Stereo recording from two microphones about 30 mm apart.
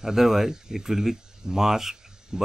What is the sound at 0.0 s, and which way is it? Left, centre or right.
Speech, centre.